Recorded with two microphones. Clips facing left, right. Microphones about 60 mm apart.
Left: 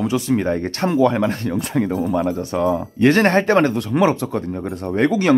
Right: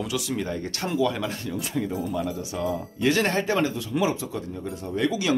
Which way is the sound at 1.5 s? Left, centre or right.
Left.